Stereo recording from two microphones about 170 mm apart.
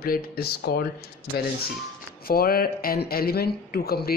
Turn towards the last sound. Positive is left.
turn(degrees=65)  # may be behind; listen again after turning